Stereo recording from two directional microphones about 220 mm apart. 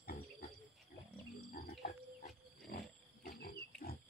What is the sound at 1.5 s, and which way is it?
Frog, 40° left (ahead or behind).